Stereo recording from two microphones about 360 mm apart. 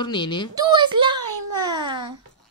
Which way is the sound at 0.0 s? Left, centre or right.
Centre.